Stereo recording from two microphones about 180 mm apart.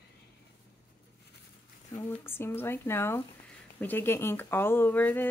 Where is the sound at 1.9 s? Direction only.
15° left (ahead or behind).